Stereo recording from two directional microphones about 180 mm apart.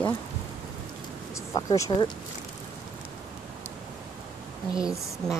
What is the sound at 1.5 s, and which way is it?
Speech, 20° left (ahead or behind).